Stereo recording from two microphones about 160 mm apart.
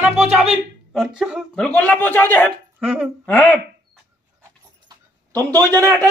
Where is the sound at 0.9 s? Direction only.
5° right (ahead or behind).